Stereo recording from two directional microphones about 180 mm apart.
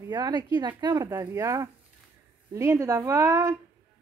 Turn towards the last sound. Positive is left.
turn(degrees=-15)  # may be behind; listen again after turning